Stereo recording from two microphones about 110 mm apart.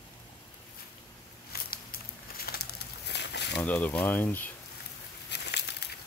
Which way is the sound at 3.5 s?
15° left (ahead or behind).